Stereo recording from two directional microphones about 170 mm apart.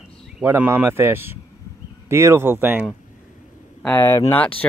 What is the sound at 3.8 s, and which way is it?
Speech, 15° left (ahead or behind).